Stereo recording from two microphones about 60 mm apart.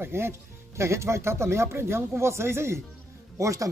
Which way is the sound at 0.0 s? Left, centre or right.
Right.